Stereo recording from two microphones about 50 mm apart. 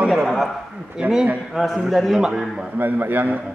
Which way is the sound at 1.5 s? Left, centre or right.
Centre.